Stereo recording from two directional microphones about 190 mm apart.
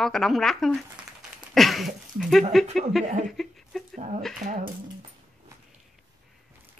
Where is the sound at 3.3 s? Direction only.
Centre (ahead or behind).